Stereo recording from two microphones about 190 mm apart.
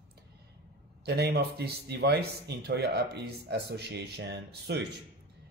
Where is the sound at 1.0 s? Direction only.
60° right (ahead or behind).